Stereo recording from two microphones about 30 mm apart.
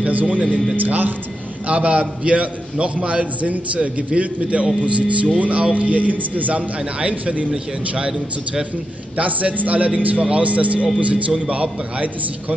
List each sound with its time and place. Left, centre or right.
0.1 s speech: right
1.7 s a man's voice: right
5.9 s a man's voice: right
7.1 s a man's voice: right
9.1 s a man's voice: right
10.2 s a man's voice: right